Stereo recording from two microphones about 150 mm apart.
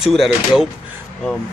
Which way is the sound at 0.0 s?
Centre (ahead or behind).